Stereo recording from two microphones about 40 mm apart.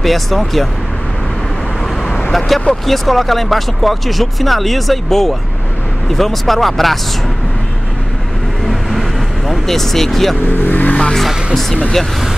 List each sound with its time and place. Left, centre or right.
0.0 s speech: centre
2.3 s speech: centre
9.5 s speech: centre
10.5 s speech: left